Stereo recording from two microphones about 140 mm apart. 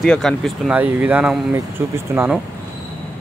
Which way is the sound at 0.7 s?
10° right (ahead or behind).